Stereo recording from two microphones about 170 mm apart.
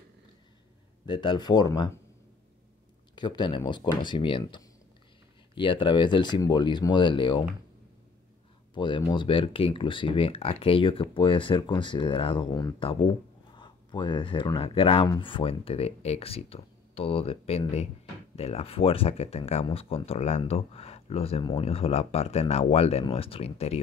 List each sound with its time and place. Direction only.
1.0 s speech: 25° left (ahead or behind)
3.2 s speech: 25° left (ahead or behind)
8.7 s speech: 30° left (ahead or behind)